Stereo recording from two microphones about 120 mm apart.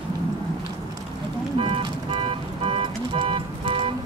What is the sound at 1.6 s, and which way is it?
Vehicle, 50° right (ahead or behind).